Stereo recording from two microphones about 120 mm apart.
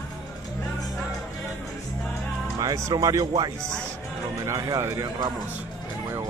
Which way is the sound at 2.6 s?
30° right (ahead or behind).